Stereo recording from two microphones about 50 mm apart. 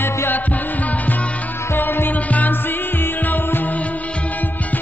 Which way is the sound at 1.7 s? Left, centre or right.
Left.